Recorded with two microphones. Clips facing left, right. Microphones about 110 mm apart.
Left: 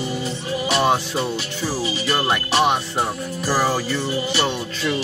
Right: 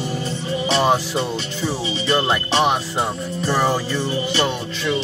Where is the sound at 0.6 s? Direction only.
5° left (ahead or behind).